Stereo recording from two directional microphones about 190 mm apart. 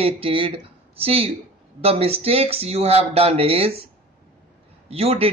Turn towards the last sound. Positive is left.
turn(degrees=-30)  # may be behind; listen again after turning